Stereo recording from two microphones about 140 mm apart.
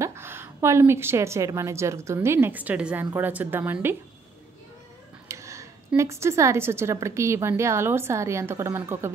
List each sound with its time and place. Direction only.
0.0 s a woman's voice: 20° right (ahead or behind)
5.3 s a sound: 20° right (ahead or behind)
5.9 s a woman's voice: 20° right (ahead or behind)